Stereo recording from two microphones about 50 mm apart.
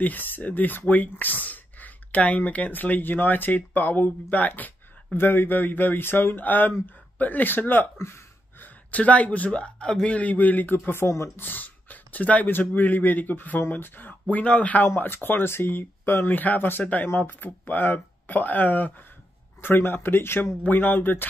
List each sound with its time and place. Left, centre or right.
0.0 s speech: left
5.1 s speech: left
6.4 s speech: left
11.3 s a sound: left
12.4 s speech: left
14.2 s speech: left
15.2 s speech: left
16.3 s speech: left
16.8 s speech: left
17.1 s speech: left
19.6 s speech: left